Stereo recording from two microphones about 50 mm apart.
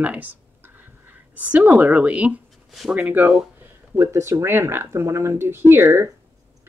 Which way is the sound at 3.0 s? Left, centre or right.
Right.